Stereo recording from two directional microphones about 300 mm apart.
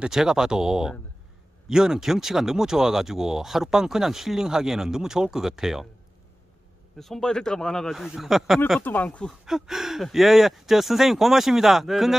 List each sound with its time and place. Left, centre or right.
0.0 s speech: centre
7.0 s speech: centre